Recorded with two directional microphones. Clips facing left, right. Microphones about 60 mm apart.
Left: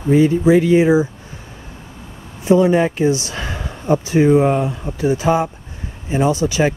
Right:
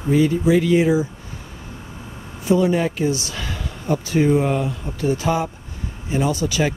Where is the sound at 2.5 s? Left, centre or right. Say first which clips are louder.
Left 5 dB; left.